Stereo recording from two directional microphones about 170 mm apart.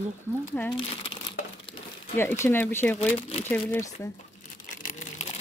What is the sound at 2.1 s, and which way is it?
Speech, 15° left (ahead or behind).